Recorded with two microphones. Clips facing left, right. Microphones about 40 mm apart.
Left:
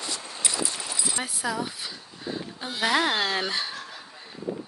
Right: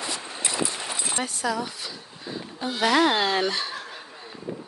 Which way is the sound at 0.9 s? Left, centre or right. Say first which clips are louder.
Even; right.